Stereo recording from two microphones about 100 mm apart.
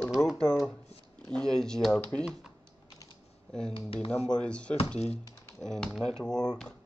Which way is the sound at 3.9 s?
75° left (ahead or behind).